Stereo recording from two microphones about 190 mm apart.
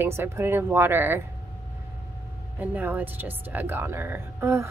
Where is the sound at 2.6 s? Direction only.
10° right (ahead or behind).